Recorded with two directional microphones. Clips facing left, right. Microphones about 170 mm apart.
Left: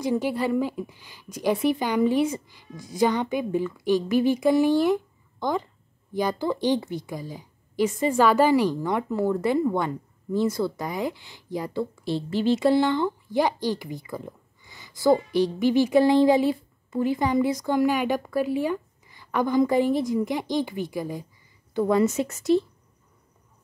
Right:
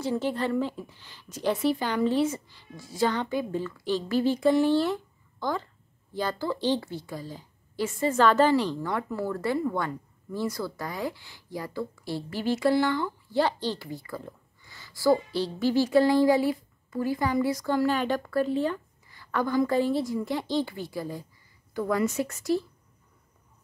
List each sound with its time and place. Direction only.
0.0 s a woman's voice: 15° left (ahead or behind)